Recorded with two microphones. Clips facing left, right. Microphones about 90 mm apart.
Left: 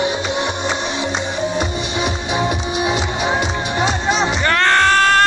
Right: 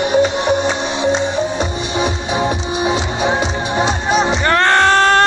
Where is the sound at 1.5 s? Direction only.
35° right (ahead or behind).